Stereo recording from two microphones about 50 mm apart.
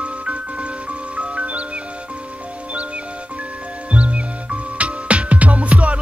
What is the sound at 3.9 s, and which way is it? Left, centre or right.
Music, right.